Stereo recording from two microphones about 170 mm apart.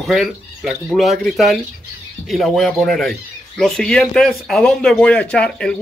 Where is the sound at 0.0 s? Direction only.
Centre (ahead or behind).